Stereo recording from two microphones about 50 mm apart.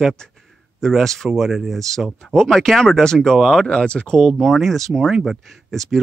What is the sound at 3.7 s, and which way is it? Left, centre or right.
Speech, centre.